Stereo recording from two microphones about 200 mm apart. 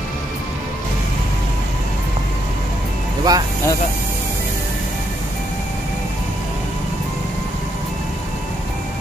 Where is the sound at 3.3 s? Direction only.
20° right (ahead or behind).